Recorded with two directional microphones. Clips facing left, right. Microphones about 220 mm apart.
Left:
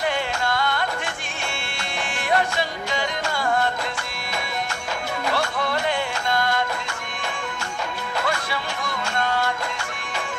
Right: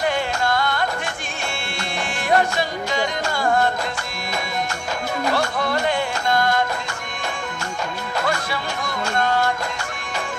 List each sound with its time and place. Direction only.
0.0 s music: 40° right (ahead or behind)
2.2 s music: 40° right (ahead or behind)
5.2 s music: 40° right (ahead or behind)
8.2 s music: 40° right (ahead or behind)